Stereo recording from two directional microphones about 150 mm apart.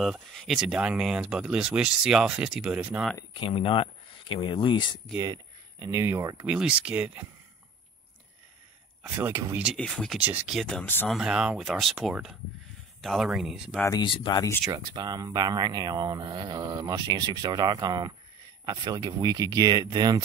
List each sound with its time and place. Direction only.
0.0 s speech: centre (ahead or behind)
3.3 s speech: 35° left (ahead or behind)
5.1 s speech: 25° right (ahead or behind)
6.4 s speech: 10° right (ahead or behind)
9.0 s speech: 15° right (ahead or behind)
9.8 s speech: 5° left (ahead or behind)
10.2 s speech: 10° right (ahead or behind); by 11.1 s 10° left (ahead or behind)
11.1 s speech: 5° right (ahead or behind)
13.9 s speech: 30° left (ahead or behind)
14.7 s speech: 25° right (ahead or behind)